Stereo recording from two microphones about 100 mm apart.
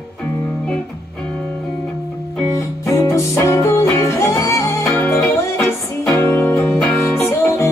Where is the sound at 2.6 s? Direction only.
30° left (ahead or behind).